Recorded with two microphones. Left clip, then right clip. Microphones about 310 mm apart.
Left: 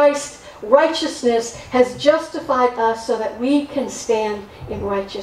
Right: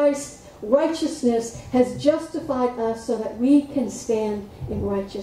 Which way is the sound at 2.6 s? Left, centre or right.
Centre.